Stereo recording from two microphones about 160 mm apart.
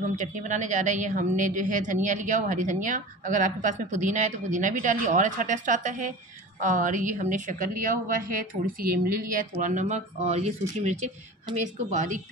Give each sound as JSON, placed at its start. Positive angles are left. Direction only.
{"t": 0.1, "sound": "a woman's voice", "side_deg": -50}